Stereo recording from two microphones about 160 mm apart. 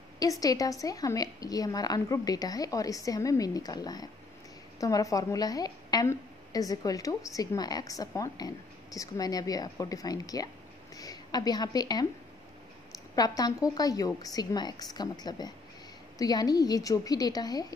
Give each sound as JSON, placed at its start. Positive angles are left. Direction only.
{"t": 0.2, "sound": "a woman's voice", "side_deg": 20}
{"t": 13.1, "sound": "a woman's voice", "side_deg": 25}